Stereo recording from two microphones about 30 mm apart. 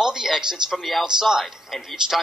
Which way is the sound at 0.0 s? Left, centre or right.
Centre.